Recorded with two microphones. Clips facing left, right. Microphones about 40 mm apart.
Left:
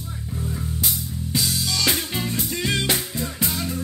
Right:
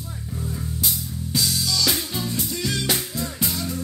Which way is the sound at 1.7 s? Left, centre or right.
Left.